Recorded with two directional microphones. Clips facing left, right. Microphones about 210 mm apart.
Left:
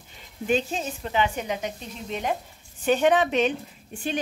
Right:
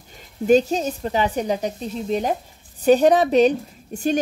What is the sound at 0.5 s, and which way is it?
A woman's voice, 40° right (ahead or behind).